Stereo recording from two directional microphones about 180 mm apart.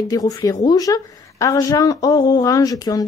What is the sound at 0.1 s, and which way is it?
A woman's voice, 20° left (ahead or behind).